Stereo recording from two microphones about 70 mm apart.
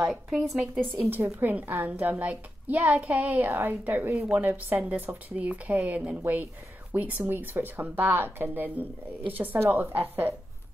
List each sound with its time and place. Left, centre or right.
0.1 s speech: centre
1.1 s a woman's voice: right